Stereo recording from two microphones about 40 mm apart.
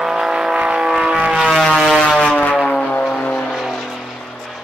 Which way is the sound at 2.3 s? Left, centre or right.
Left.